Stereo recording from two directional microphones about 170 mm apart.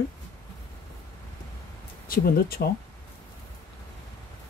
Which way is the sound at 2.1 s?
60° left (ahead or behind).